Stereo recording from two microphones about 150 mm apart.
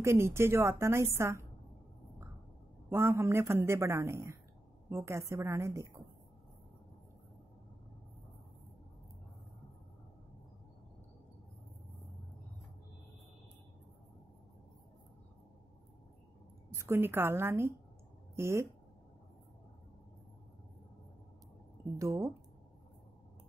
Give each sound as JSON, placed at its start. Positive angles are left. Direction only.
{"t": 0.0, "sound": "a woman's voice", "side_deg": -20}
{"t": 2.9, "sound": "a woman's voice", "side_deg": -15}
{"t": 16.7, "sound": "a woman's voice", "side_deg": -20}